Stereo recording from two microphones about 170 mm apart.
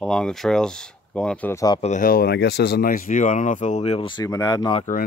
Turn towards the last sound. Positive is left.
turn(degrees=20)  # may be behind; listen again after turning